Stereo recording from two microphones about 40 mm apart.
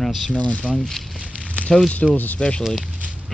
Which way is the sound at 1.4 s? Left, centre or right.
Left.